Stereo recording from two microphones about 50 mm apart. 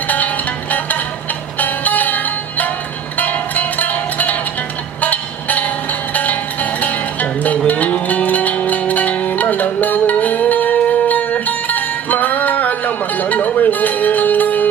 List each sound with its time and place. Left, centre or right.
0.1 s music: left